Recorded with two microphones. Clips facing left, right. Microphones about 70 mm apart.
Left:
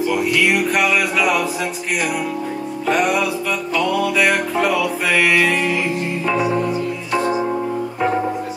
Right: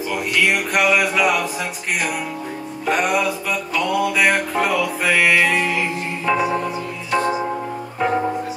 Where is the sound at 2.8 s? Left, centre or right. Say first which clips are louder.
Left 1 dB; centre.